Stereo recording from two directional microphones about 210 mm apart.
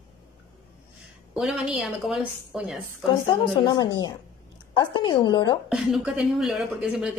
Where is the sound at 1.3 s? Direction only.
5° right (ahead or behind).